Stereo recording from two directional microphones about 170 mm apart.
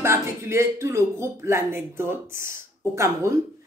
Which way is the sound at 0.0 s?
15° right (ahead or behind).